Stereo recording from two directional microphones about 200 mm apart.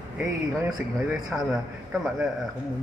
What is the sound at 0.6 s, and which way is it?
Speech, 20° right (ahead or behind).